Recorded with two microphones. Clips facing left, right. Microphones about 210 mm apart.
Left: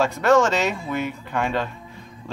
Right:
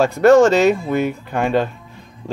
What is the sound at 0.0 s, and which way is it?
Speech, 35° right (ahead or behind).